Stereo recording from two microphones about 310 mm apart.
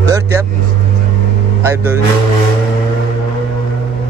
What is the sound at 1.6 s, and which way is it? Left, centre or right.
Vehicle, centre.